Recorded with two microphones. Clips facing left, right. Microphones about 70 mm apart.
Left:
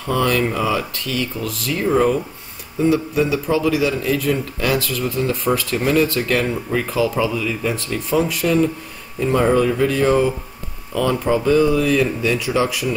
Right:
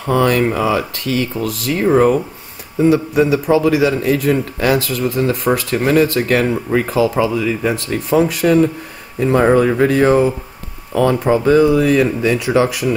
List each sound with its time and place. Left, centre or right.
0.0 s speech: right
0.6 s speech: right
1.0 s speech: right
2.8 s a man's voice: right
6.9 s speech: right
9.2 s speech: right